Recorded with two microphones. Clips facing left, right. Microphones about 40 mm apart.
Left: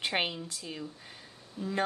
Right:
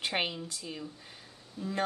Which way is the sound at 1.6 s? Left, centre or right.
Left.